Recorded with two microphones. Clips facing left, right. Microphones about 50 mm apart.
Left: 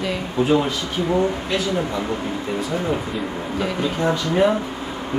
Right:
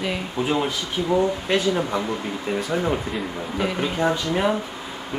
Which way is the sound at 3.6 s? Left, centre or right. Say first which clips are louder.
Even; centre.